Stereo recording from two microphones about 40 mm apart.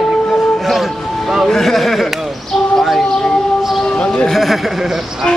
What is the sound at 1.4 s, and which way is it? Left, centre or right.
Speech, centre.